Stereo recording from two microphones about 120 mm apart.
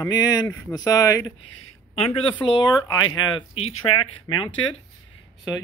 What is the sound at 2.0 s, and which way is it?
Speech, 55° left (ahead or behind).